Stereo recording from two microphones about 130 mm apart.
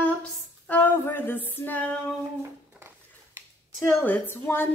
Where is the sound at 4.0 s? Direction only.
15° left (ahead or behind).